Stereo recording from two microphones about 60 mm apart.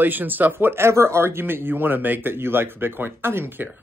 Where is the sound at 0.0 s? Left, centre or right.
Right.